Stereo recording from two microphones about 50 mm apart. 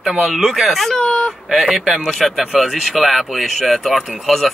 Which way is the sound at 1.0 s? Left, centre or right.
Left.